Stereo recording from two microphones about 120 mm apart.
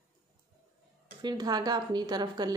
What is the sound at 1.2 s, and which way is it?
A woman's voice, 35° right (ahead or behind).